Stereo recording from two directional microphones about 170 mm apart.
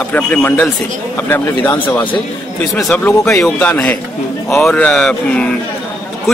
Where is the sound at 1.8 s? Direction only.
25° left (ahead or behind).